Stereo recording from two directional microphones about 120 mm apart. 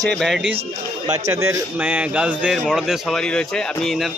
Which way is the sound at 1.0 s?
25° right (ahead or behind).